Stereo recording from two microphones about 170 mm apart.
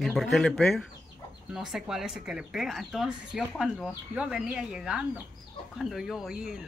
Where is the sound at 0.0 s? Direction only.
Centre (ahead or behind).